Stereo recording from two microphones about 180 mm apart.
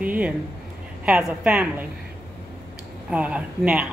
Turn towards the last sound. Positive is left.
turn(degrees=-5)  # may be behind; listen again after turning